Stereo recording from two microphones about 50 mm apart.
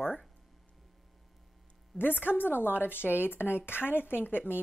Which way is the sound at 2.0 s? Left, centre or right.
Left.